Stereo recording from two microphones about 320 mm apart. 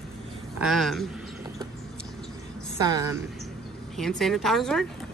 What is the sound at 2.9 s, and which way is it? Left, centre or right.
Speech, centre.